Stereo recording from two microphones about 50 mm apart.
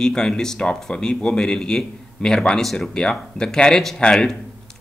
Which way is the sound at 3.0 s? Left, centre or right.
Centre.